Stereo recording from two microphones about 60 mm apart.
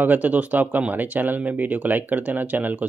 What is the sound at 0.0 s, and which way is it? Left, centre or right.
Speech, right.